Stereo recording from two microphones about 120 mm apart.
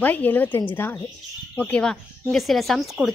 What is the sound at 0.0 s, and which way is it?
A woman's voice, 15° left (ahead or behind).